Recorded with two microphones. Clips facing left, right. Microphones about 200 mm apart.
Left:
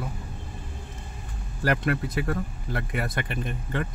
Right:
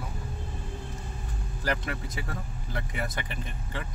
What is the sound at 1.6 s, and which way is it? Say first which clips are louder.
Speech: left 7 dB; 60° left (ahead or behind).